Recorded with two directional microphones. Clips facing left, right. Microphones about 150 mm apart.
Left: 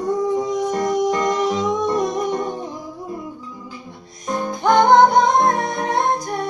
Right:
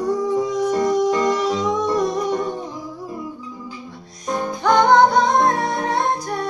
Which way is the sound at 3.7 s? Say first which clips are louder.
Right 1 dB; 55° left (ahead or behind).